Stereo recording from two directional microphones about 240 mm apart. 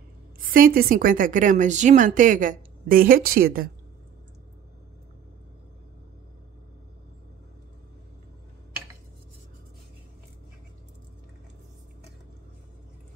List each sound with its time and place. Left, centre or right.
0.4 s a woman's voice: right